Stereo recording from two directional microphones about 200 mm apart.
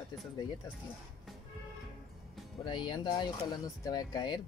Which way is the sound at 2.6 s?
20° left (ahead or behind).